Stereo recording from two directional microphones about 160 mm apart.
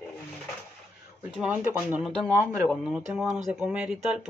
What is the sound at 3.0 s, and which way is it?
Speech, 50° right (ahead or behind).